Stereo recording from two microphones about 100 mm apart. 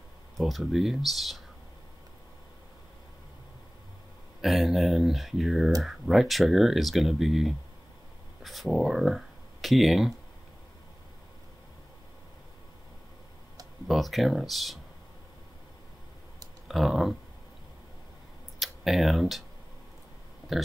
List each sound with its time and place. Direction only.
0.4 s speech: centre (ahead or behind)
4.4 s speech: centre (ahead or behind)
13.8 s speech: centre (ahead or behind)
16.6 s speech: centre (ahead or behind)
18.6 s speech: centre (ahead or behind)
20.5 s speech: centre (ahead or behind)